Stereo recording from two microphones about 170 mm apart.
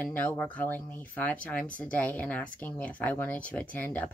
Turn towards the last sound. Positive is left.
turn(degrees=10)  # may be behind; listen again after turning